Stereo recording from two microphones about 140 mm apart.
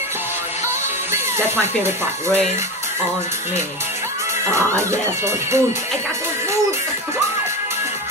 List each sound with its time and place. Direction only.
1.1 s speech: 15° right (ahead or behind)
4.5 s speech: 20° right (ahead or behind)